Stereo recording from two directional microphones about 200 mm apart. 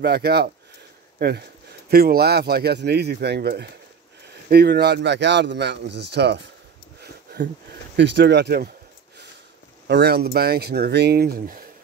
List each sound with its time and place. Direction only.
0.0 s speech: 55° right (ahead or behind)
1.9 s speech: 50° right (ahead or behind)
7.9 s speech: 60° right (ahead or behind)
9.8 s speech: 55° right (ahead or behind)